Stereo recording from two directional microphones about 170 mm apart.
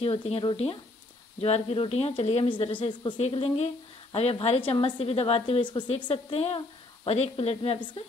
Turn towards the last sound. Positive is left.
turn(degrees=35)  # may be behind; listen again after turning